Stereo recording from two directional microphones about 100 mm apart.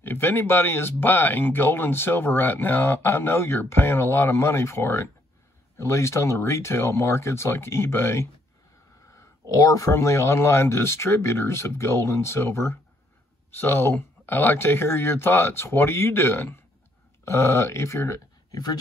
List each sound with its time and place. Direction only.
0.0 s speech: 20° left (ahead or behind)